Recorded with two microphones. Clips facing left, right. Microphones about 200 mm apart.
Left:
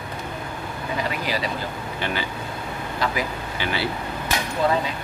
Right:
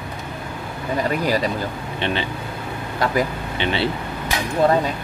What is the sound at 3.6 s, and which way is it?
Speech, 25° right (ahead or behind).